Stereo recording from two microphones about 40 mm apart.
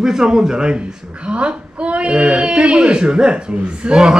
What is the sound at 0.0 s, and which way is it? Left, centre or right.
A woman's voice, centre.